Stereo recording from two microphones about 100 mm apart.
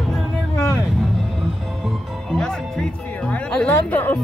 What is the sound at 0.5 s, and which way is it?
Vehicle, 25° left (ahead or behind).